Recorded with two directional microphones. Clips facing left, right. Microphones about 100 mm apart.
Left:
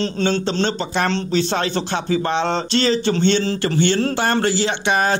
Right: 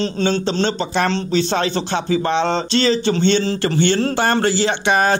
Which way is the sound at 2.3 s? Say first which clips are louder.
Right 2 dB; 25° right (ahead or behind).